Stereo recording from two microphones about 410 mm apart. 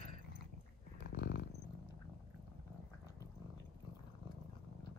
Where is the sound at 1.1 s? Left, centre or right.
Left.